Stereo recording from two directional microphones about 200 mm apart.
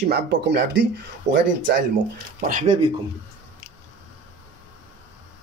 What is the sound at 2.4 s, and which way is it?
Speech, 40° right (ahead or behind).